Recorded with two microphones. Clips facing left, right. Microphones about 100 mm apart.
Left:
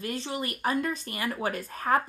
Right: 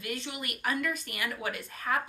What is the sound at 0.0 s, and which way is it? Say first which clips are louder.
Speech: left 5 dB; 35° left (ahead or behind).